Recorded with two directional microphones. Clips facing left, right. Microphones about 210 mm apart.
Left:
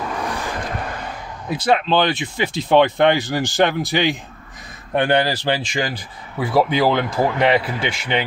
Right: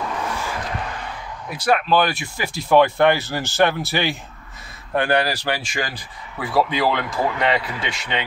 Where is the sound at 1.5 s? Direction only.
25° left (ahead or behind).